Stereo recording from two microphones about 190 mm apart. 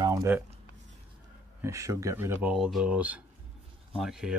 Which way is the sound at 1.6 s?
15° right (ahead or behind).